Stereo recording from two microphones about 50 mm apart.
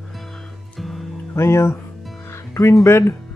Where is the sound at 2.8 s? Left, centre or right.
Left.